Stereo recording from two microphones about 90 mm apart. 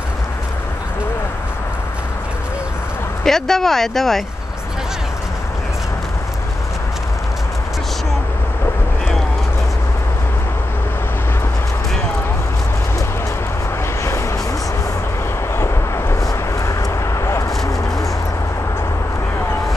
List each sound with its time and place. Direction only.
3.3 s speech: 5° left (ahead or behind)
15.5 s vehicle: 30° left (ahead or behind)
17.2 s a sound: 30° left (ahead or behind)